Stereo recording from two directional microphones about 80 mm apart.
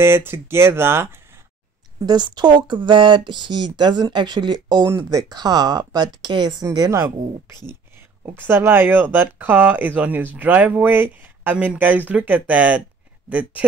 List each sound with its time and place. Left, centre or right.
0.0 s speech: right
2.0 s speech: right
4.8 s speech: right
5.3 s speech: right
8.4 s speech: right
11.5 s speech: centre